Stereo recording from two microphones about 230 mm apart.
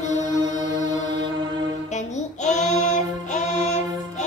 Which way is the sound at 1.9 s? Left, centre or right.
Left.